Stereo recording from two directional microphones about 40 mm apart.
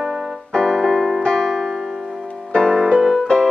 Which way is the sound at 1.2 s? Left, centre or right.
Centre.